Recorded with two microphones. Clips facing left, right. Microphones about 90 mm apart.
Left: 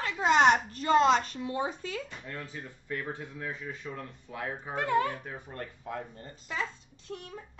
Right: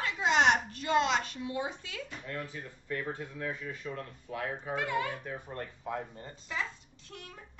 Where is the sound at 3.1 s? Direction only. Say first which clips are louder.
Right 1 dB; 20° left (ahead or behind).